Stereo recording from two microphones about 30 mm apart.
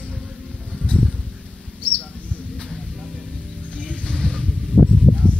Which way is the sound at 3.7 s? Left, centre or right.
Left.